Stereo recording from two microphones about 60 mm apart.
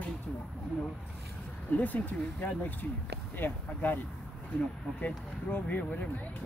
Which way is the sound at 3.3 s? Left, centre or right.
Left.